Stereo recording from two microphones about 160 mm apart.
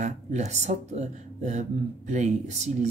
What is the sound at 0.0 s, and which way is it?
Speech, 45° right (ahead or behind).